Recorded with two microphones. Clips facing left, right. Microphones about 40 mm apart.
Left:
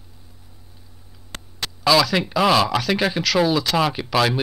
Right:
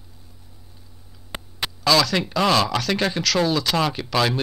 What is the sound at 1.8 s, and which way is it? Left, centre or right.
Speech, centre.